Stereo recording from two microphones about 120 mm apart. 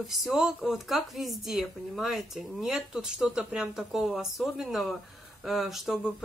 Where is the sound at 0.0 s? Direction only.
Centre (ahead or behind).